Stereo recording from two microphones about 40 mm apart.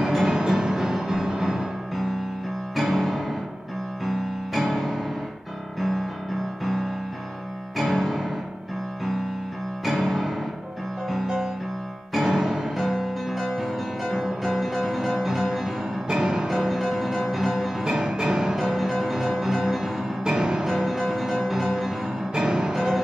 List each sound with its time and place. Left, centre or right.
0.3 s music: centre
2.7 s music: centre
9.8 s music: centre
11.2 s music: centre
12.1 s music: centre
16.1 s music: centre
17.8 s music: centre
18.6 s music: centre
20.2 s music: centre
22.3 s music: centre